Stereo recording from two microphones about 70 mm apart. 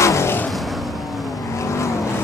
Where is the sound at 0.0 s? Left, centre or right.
Left.